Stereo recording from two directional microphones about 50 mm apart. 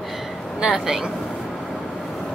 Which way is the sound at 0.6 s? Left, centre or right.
Centre.